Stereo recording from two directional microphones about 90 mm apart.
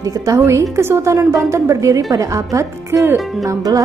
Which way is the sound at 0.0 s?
40° right (ahead or behind).